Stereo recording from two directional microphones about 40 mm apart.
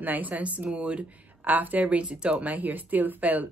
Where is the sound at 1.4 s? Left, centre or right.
Right.